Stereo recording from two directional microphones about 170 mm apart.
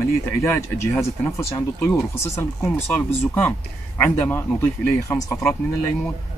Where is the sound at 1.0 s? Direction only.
15° left (ahead or behind).